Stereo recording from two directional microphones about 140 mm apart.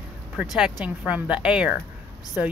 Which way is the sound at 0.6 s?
10° right (ahead or behind).